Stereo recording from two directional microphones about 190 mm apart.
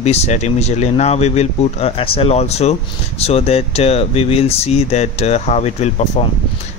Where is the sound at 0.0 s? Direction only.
35° left (ahead or behind).